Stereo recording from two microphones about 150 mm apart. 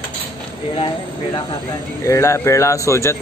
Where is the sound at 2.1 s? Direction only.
20° left (ahead or behind).